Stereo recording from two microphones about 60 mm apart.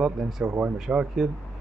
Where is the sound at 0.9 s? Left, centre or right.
Right.